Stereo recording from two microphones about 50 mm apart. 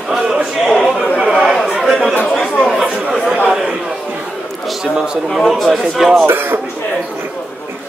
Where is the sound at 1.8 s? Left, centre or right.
Centre.